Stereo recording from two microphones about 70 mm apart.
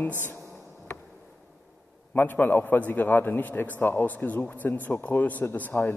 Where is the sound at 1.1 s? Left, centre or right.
Centre.